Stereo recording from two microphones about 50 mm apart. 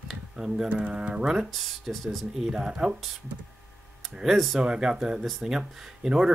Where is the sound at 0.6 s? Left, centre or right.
Right.